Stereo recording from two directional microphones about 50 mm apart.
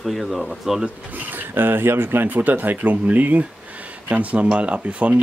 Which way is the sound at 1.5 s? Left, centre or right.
Right.